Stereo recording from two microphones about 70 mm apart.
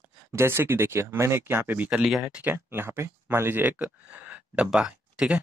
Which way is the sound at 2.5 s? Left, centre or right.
Right.